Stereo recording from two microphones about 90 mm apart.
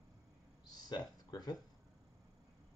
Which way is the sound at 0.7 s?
50° left (ahead or behind).